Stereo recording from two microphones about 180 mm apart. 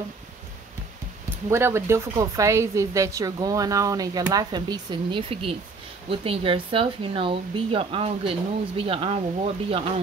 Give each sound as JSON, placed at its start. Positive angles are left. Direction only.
{"t": 1.5, "sound": "a woman's voice", "side_deg": -15}